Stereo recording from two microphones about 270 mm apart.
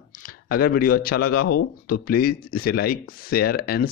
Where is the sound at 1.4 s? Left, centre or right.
Left.